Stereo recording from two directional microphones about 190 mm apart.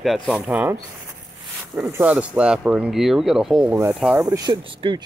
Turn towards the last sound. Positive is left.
turn(degrees=-25)  # may be behind; listen again after turning